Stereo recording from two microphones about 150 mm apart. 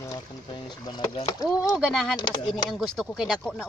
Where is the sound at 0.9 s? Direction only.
30° left (ahead or behind).